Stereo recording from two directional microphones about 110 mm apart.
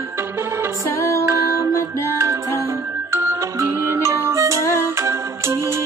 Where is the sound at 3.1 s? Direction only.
25° right (ahead or behind).